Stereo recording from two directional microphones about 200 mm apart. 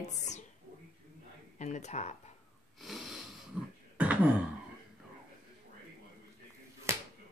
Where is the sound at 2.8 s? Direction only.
Centre (ahead or behind).